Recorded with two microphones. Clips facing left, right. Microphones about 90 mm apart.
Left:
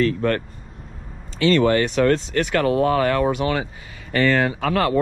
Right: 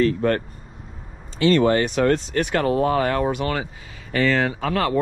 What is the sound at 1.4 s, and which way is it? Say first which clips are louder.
Speech: even; 35° right (ahead or behind).